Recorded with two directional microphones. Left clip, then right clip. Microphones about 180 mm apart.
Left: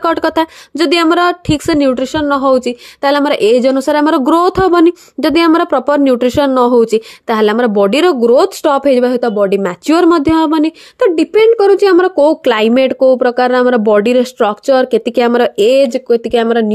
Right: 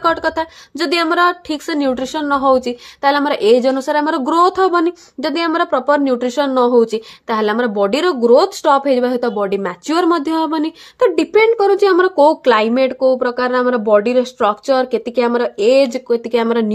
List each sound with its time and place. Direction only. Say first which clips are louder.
0.0 s a woman's voice: left 4 dB; 40° left (ahead or behind); by 16.7 s 20° left (ahead or behind)